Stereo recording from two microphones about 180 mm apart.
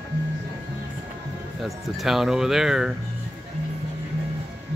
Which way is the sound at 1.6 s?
Centre (ahead or behind).